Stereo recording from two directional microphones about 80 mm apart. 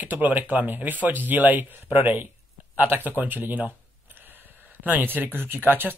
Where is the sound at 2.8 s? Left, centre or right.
Right.